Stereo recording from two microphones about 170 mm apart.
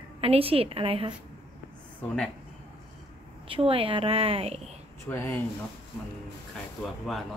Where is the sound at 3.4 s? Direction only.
30° right (ahead or behind).